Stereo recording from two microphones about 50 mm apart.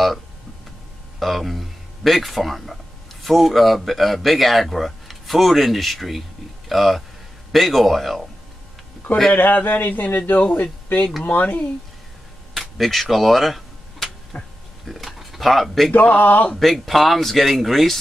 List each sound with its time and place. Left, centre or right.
1.2 s speech: centre
9.3 s a man's voice: left
12.5 s a sound: centre
14.3 s speech: left
14.9 s speech: centre
15.9 s a man's voice: left
16.5 s speech: centre